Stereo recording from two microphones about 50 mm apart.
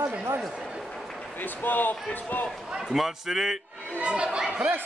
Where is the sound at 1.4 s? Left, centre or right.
Left.